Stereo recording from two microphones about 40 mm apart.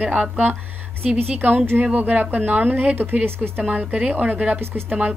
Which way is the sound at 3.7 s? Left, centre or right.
Right.